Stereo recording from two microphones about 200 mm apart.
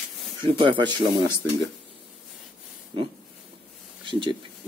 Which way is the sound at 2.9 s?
25° right (ahead or behind).